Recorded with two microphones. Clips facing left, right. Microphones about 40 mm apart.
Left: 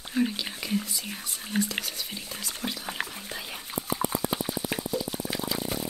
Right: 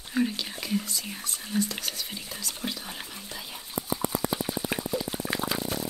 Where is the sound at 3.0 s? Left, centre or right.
Left.